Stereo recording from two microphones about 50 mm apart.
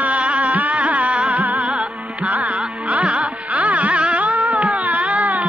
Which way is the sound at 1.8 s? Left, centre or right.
Right.